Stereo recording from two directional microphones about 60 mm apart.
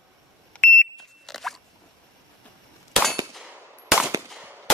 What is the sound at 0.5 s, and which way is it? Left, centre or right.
Smoke detector, centre.